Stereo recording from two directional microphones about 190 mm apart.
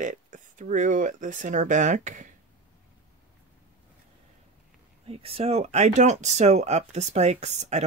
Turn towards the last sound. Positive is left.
turn(degrees=-35)  # may be behind; listen again after turning